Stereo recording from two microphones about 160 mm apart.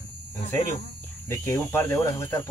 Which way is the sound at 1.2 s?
15° left (ahead or behind).